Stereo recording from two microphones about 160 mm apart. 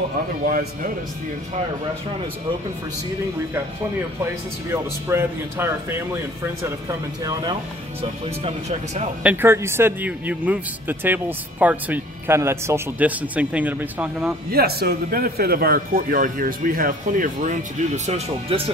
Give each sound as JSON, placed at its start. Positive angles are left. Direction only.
{"t": 0.5, "sound": "speech", "side_deg": -60}
{"t": 4.2, "sound": "a man's voice", "side_deg": -15}
{"t": 8.0, "sound": "speech", "side_deg": -45}
{"t": 9.2, "sound": "a man's voice", "side_deg": -10}
{"t": 14.5, "sound": "speech", "side_deg": -75}